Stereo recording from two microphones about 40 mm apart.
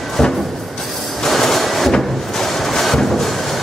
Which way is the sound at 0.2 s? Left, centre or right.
Centre.